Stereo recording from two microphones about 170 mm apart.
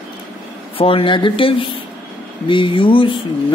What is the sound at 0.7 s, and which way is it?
Speech, 30° left (ahead or behind).